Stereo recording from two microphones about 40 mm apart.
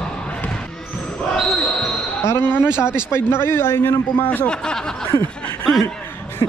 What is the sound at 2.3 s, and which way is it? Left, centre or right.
A man's voice, left.